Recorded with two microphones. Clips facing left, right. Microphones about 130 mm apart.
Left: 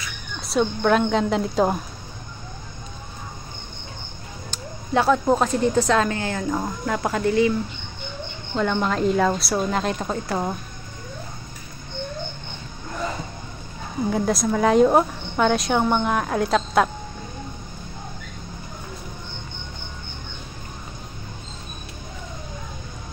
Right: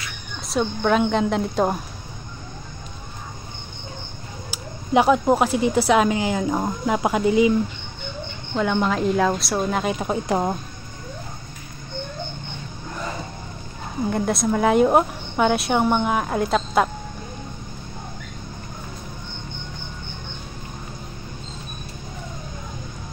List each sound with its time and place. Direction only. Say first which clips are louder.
0.5 s a woman's voice: left 1 dB; centre (ahead or behind)
4.5 s speech: right 3 dB; 15° right (ahead or behind)
8.5 s a woman's voice: right 1 dB; 5° right (ahead or behind); by 10.6 s 20° right (ahead or behind)
14.1 s a woman's voice: even; centre (ahead or behind)